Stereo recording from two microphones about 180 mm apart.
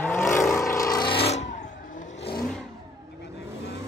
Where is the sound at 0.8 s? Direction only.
20° left (ahead or behind).